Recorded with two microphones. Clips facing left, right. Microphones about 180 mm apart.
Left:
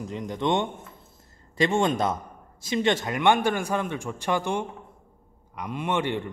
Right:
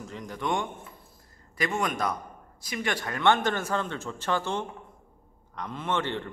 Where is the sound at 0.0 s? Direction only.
20° left (ahead or behind).